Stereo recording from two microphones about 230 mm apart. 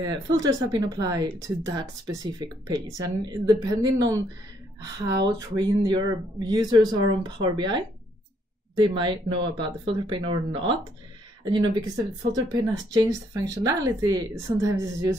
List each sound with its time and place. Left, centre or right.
0.0 s speech: centre
12.3 s speech: centre